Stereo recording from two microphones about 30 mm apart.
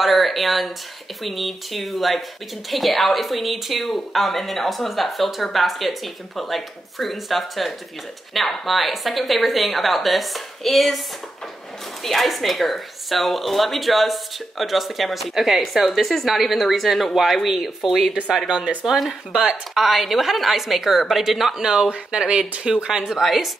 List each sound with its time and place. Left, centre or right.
0.0 s a woman's voice: centre
12.0 s a woman's voice: centre
21.5 s speech: right
23.2 s a woman's voice: centre